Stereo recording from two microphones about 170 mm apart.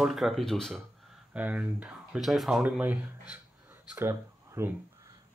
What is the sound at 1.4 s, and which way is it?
Speech, 5° right (ahead or behind).